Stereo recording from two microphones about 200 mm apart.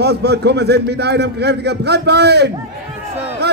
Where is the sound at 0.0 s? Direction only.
55° right (ahead or behind).